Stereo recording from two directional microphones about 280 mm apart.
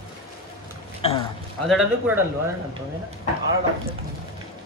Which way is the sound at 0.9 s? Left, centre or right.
Centre.